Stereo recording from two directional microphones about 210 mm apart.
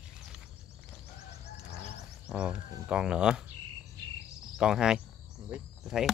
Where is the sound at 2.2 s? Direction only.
5° right (ahead or behind).